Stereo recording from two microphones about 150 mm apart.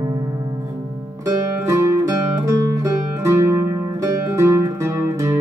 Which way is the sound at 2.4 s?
20° right (ahead or behind).